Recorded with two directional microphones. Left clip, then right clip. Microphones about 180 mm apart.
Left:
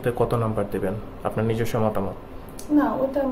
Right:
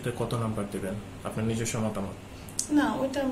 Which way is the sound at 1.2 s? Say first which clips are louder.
Left 8 dB; 35° left (ahead or behind).